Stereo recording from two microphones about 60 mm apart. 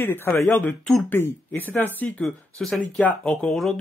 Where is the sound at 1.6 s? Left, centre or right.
Left.